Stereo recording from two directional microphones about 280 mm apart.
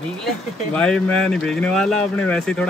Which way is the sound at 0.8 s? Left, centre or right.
Centre.